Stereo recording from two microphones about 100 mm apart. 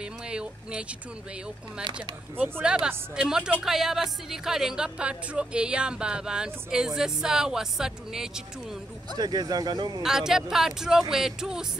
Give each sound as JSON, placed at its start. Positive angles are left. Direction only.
{"t": 0.3, "sound": "speech", "side_deg": -10}
{"t": 2.3, "sound": "speech", "side_deg": -15}
{"t": 9.1, "sound": "speech", "side_deg": -45}
{"t": 10.0, "sound": "speech", "side_deg": -5}